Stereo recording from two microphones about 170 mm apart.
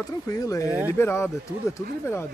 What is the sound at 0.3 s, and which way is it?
Speech, 20° left (ahead or behind).